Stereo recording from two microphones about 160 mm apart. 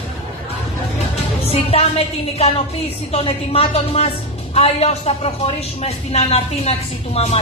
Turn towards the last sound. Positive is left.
turn(degrees=40)  # may be behind; listen again after turning